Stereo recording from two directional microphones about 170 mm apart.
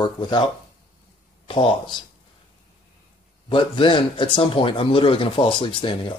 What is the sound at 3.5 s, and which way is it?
Speech, 30° left (ahead or behind).